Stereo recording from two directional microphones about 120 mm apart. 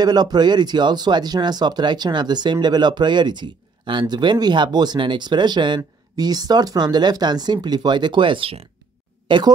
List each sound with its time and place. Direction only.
0.0 s speech: 35° right (ahead or behind); by 8.6 s 50° right (ahead or behind)
9.3 s speech: 40° right (ahead or behind)